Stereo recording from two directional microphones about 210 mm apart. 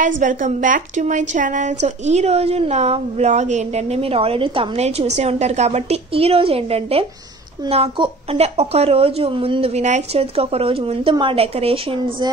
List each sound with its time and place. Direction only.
0.2 s a woman's voice: 40° right (ahead or behind)